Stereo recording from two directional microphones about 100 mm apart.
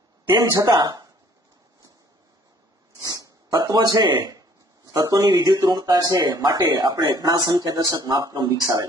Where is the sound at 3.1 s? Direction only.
40° right (ahead or behind).